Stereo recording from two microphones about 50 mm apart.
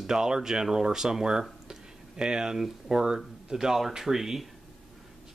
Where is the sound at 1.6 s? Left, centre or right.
Centre.